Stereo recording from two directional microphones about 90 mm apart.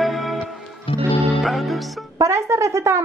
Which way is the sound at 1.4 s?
Centre (ahead or behind).